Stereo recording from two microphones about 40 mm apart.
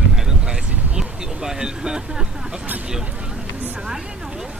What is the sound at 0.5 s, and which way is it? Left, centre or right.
Vehicle, centre.